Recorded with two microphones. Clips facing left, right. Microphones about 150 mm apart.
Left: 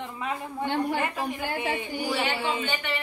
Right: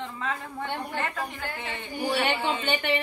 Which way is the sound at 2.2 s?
60° right (ahead or behind).